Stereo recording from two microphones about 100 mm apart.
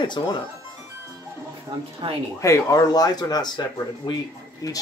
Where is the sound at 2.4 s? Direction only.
35° left (ahead or behind).